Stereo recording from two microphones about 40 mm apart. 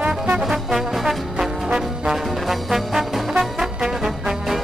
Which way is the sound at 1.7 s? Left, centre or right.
Centre.